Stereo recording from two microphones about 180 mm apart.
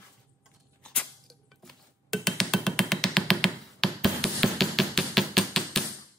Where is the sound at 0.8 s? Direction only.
5° left (ahead or behind).